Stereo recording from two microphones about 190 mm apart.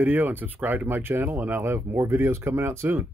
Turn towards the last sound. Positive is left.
turn(degrees=-10)  # may be behind; listen again after turning